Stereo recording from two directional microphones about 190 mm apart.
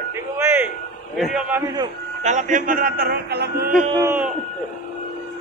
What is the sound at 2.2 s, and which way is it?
Speech, 40° right (ahead or behind).